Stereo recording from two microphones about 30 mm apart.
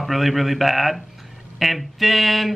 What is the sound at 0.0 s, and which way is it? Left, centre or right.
Speech, centre.